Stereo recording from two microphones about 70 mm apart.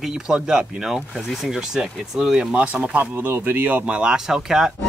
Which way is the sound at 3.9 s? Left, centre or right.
Centre.